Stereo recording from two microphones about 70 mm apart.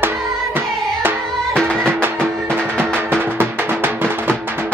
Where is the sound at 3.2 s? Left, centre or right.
Right.